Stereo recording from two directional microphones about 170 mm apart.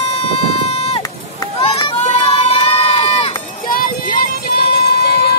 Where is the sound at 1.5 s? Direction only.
30° left (ahead or behind).